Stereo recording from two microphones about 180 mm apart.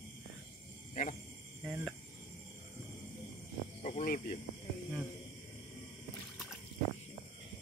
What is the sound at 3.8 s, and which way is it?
Snake, 30° left (ahead or behind).